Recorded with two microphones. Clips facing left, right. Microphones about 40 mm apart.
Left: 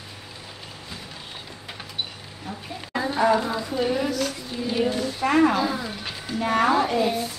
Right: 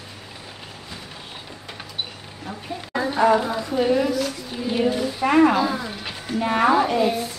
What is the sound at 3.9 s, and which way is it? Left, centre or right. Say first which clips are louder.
Speech: right 4 dB; centre.